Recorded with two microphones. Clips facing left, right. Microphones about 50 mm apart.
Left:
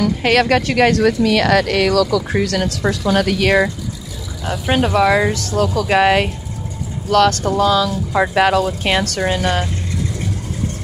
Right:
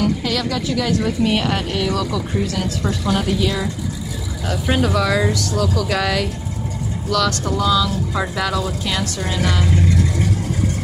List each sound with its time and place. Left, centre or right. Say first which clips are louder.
0.2 s speech: left 8 dB; left
1.0 s speech: left 5 dB; left
2.9 s speech: left 4 dB; left
4.7 s speech: left 5 dB; left
9.4 s speech: left 2 dB; left